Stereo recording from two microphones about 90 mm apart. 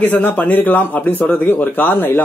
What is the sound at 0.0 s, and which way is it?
Speech, 15° left (ahead or behind).